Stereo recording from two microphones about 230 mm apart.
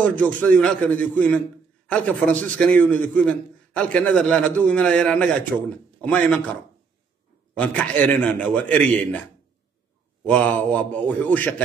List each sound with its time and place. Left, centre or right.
0.0 s a man's voice: centre
7.5 s a man's voice: centre
10.2 s a man's voice: centre